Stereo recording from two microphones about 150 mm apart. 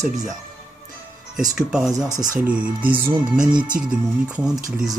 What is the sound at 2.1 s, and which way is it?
Speech, 60° right (ahead or behind).